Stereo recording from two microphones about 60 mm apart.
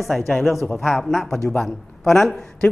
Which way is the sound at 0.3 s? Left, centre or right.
Centre.